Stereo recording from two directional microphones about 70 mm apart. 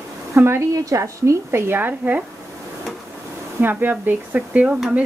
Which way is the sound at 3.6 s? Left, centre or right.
Right.